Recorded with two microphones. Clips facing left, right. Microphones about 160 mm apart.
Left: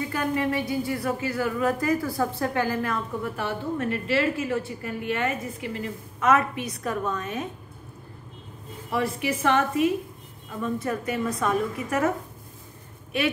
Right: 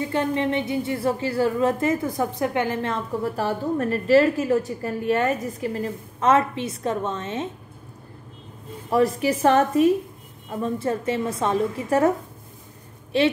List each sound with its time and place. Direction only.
0.0 s a woman's voice: 25° right (ahead or behind)
8.9 s a woman's voice: 35° right (ahead or behind)
13.1 s a woman's voice: 30° right (ahead or behind)